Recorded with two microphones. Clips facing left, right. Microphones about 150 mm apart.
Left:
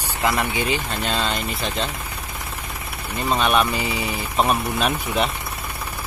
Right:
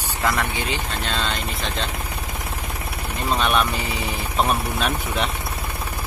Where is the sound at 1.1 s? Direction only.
5° left (ahead or behind).